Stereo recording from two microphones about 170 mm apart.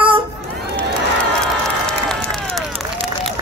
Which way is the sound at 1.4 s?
5° left (ahead or behind).